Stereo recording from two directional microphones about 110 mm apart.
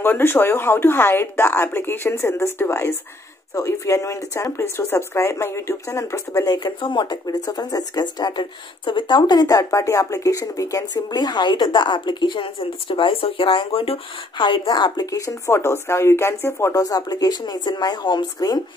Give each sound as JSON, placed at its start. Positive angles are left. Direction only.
{"t": 0.0, "sound": "speech", "side_deg": 20}
{"t": 6.5, "sound": "speech", "side_deg": 45}
{"t": 14.4, "sound": "speech", "side_deg": 45}
{"t": 16.8, "sound": "speech", "side_deg": 35}